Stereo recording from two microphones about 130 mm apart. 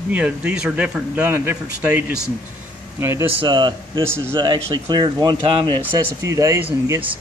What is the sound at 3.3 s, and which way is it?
Speech, 40° right (ahead or behind).